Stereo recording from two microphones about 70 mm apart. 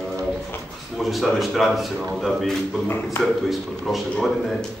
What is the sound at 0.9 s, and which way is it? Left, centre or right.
Speech, centre.